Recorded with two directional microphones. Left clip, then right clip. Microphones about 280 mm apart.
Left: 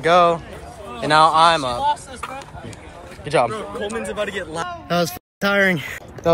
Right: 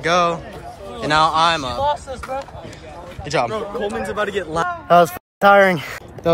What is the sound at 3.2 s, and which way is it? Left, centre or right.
Speech, centre.